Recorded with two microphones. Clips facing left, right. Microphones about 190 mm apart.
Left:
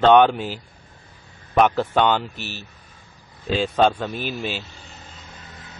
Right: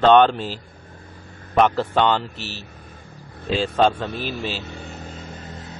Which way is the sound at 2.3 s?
30° right (ahead or behind).